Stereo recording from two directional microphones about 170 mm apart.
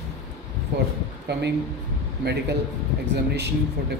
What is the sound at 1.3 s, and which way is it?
Speech, 80° right.